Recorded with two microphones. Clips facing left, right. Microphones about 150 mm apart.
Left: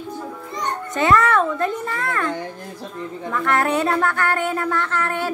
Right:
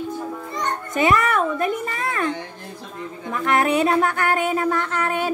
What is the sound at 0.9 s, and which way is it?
Speech, 15° right (ahead or behind).